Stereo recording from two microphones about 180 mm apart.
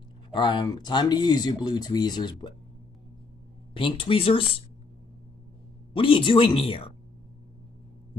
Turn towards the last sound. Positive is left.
turn(degrees=30)  # may be behind; listen again after turning